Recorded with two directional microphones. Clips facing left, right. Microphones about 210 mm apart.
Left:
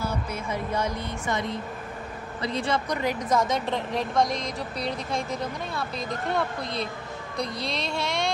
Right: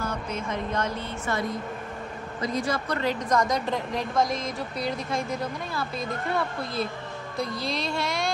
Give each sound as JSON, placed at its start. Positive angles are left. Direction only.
{"t": 0.0, "sound": "speech", "side_deg": 10}
{"t": 2.4, "sound": "speech", "side_deg": 30}
{"t": 2.9, "sound": "a woman's voice", "side_deg": 10}